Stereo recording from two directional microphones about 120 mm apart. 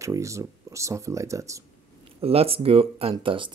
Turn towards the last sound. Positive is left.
turn(degrees=-45)  # may be behind; listen again after turning